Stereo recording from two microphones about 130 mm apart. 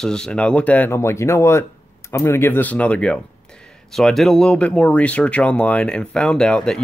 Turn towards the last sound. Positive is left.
turn(degrees=5)  # may be behind; listen again after turning